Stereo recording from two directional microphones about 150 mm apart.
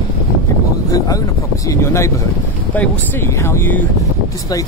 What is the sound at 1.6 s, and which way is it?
Speech, 20° left (ahead or behind).